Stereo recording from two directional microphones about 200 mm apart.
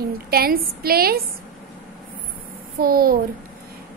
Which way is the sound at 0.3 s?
50° right (ahead or behind).